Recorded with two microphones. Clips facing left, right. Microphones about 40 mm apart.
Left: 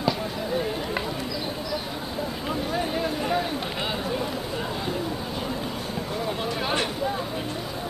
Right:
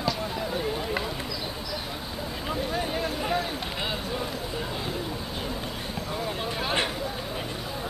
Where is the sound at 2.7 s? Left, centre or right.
Centre.